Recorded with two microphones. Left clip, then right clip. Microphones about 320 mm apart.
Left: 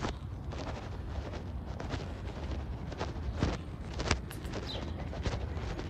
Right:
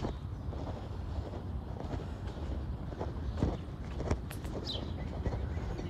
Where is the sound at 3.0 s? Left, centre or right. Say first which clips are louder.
Left 1 dB; right.